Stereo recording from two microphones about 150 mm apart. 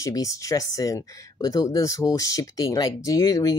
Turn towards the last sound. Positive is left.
turn(degrees=25)  # may be behind; listen again after turning